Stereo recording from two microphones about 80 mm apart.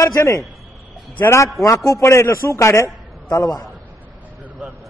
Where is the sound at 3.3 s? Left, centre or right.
Left.